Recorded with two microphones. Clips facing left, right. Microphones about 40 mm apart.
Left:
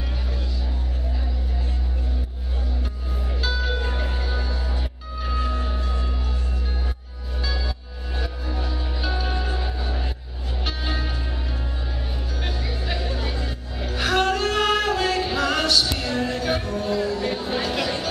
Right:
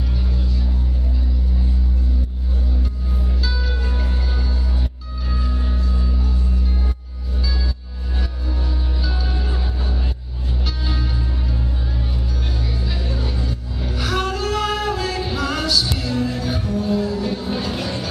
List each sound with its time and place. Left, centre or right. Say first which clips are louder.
3.7 s music: even; left
5.8 s music: right 3 dB; left
8.2 s music: even; centre
9.6 s vehicle: right 1 dB; left
10.6 s music: even; left
13.0 s music: right 2 dB; left
13.9 s music: left 2 dB; left
17.1 s a sound: right 1 dB; left